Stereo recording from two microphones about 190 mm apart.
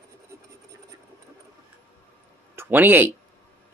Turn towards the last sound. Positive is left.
turn(degrees=-10)  # may be behind; listen again after turning